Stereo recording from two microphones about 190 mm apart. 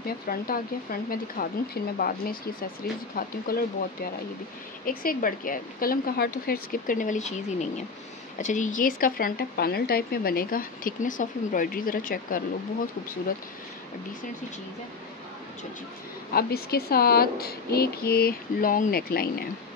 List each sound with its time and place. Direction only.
0.0 s speech: 50° left (ahead or behind)
16.3 s speech: 55° left (ahead or behind)